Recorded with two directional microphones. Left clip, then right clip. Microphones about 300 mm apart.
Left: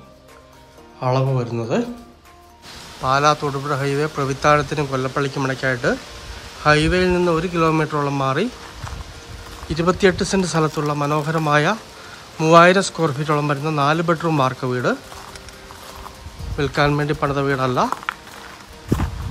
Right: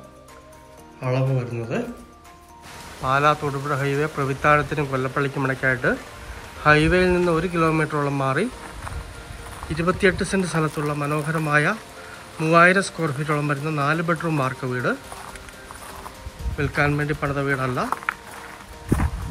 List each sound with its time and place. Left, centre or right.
1.0 s a man's voice: centre
3.0 s a man's voice: centre
9.7 s a man's voice: centre
16.5 s a man's voice: centre